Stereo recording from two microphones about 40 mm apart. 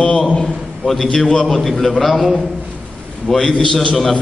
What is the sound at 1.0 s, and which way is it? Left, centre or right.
Speech, centre.